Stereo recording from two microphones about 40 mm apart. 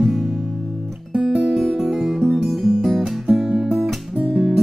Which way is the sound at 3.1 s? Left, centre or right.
Centre.